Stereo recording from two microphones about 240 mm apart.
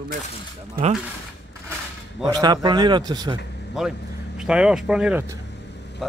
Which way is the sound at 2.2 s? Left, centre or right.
Centre.